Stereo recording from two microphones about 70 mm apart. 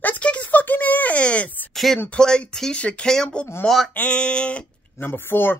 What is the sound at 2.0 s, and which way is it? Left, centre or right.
Speech, centre.